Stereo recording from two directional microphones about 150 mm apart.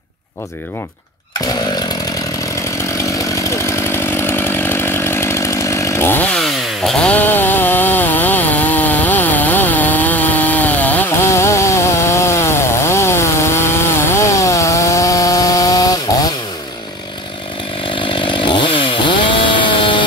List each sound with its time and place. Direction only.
3.4 s chainsaw: 15° left (ahead or behind)
6.3 s chainsaw: centre (ahead or behind); by 16.3 s 25° left (ahead or behind)
17.9 s chainsaw: 35° left (ahead or behind)